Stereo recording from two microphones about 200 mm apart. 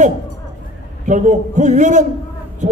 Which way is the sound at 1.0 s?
40° right (ahead or behind).